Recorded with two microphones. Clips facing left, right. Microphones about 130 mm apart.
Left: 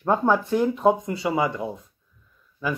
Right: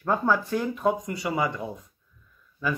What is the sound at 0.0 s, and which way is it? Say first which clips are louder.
Speech: left 3 dB; 20° left (ahead or behind).